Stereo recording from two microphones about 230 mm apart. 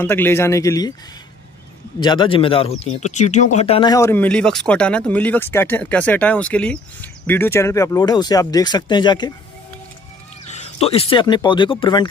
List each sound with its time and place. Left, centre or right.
0.0 s speech: centre
2.0 s speech: centre
10.5 s speech: left